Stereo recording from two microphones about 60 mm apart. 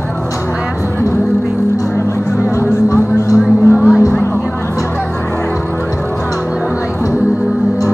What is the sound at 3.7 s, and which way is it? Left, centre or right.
Music, centre.